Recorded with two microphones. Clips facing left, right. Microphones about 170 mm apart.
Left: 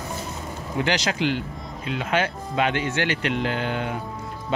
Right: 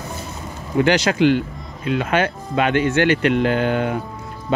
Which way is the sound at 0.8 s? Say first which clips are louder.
Right 8 dB; 55° right (ahead or behind).